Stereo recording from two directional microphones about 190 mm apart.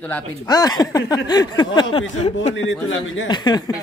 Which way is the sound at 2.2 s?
35° left (ahead or behind).